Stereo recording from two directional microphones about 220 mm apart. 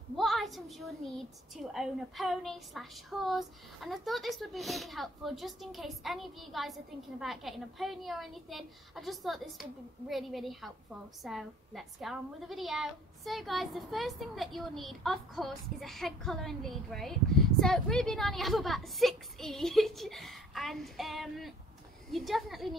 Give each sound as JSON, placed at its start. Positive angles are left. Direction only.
{"t": 0.1, "sound": "a woman's voice", "side_deg": 0}